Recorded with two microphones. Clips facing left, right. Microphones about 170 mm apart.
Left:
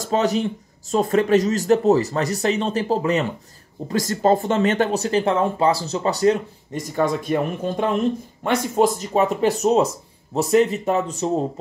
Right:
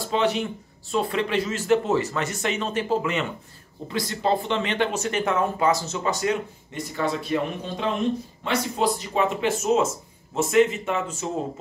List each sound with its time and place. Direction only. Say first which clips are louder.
0.0 s speech: left 3 dB; 40° left (ahead or behind)